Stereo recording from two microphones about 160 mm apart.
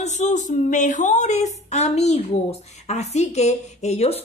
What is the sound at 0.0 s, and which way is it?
A woman's voice, 45° left (ahead or behind).